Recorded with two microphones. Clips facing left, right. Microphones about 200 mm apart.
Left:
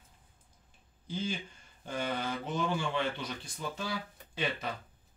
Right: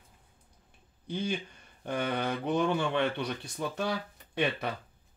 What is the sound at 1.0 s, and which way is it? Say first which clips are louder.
Speech: right 3 dB; 60° right (ahead or behind).